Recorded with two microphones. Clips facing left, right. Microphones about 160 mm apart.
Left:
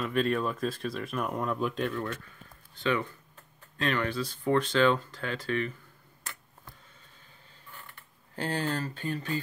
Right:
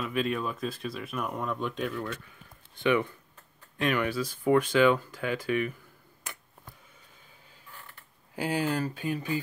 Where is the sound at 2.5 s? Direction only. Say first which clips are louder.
Right 4 dB; 15° right (ahead or behind).